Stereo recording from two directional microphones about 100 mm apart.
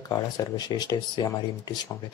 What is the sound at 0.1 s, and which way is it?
Speech, 40° left (ahead or behind).